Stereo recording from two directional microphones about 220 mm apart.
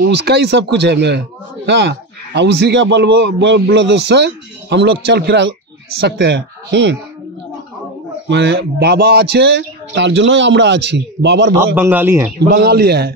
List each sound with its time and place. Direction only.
0.0 s a man's voice: 50° right (ahead or behind)
8.3 s a man's voice: 50° right (ahead or behind)
11.5 s a man's voice: 10° right (ahead or behind)
12.5 s a man's voice: 45° right (ahead or behind)